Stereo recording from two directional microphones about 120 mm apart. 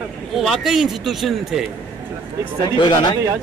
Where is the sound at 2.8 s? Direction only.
40° left (ahead or behind).